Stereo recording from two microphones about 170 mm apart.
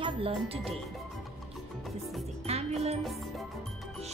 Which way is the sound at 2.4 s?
40° right (ahead or behind).